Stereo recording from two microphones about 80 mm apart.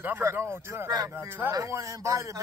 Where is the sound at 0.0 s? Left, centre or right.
Right.